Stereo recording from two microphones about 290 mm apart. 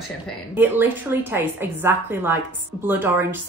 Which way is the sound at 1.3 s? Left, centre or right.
Centre.